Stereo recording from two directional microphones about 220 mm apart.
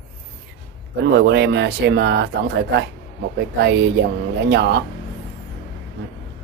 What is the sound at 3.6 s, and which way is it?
Speech, 50° right (ahead or behind).